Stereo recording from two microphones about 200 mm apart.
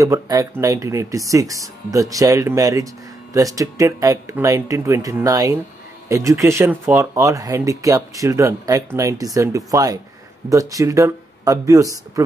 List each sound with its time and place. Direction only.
0.0 s speech: 15° right (ahead or behind)